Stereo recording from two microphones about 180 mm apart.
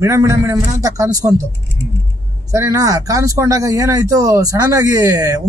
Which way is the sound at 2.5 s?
20° right (ahead or behind).